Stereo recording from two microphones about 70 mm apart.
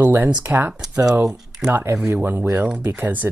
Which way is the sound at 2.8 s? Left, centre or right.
Right.